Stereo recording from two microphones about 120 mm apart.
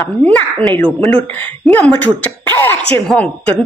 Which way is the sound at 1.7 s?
15° left (ahead or behind).